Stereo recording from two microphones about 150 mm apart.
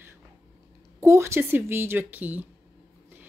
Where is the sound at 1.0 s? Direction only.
20° right (ahead or behind).